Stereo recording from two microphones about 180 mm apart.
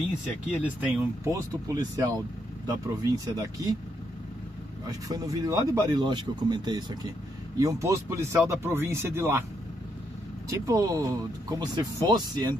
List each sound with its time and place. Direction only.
0.7 s speech: 10° right (ahead or behind)
1.3 s speech: 20° right (ahead or behind)
4.8 s speech: 20° right (ahead or behind)
10.7 s speech: 20° right (ahead or behind)